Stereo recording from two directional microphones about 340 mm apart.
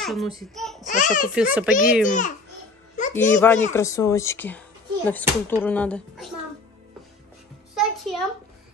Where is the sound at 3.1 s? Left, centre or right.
Centre.